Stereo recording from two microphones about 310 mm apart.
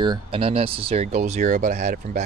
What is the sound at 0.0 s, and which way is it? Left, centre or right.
Speech, centre.